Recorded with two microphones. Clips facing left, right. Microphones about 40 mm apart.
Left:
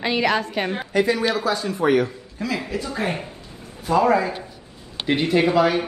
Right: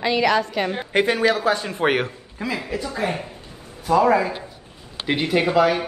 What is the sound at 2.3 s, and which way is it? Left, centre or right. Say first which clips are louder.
Speech: even; right.